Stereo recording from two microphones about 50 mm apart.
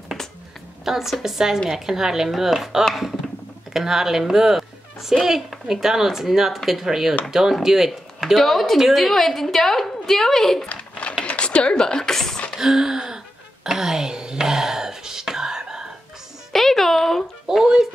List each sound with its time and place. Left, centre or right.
0.8 s a child's voice: centre
10.7 s a sound: left
12.5 s a sound: centre
13.7 s whispering: centre
16.5 s music: centre
17.5 s speech: centre